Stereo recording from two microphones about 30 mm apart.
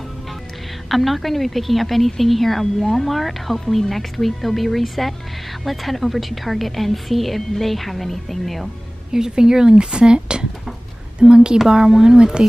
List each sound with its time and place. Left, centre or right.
0.8 s a woman's voice: centre
9.1 s speech: right
11.9 s speech: centre
12.4 s speech: right